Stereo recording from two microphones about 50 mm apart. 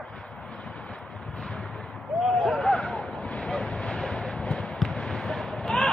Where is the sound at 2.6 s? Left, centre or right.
Centre.